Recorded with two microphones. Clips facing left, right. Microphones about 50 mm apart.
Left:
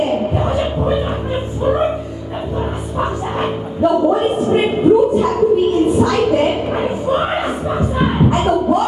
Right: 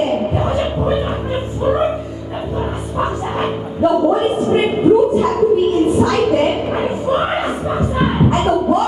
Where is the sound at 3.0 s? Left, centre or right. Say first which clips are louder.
Even; centre.